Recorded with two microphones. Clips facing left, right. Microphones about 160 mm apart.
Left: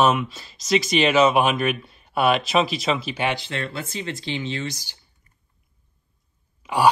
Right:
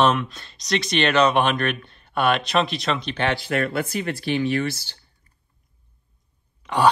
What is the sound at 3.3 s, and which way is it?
Speech, 25° left (ahead or behind).